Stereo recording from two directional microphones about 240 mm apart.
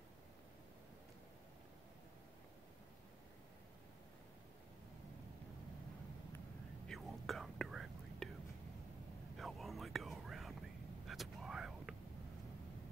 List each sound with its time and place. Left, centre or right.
6.9 s whispering: centre
9.4 s whispering: centre
11.1 s a sound: centre